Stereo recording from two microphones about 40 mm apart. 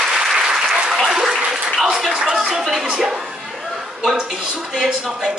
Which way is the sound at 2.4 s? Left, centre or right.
Centre.